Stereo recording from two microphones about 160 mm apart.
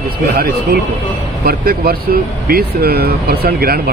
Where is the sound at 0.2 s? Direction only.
70° right (ahead or behind).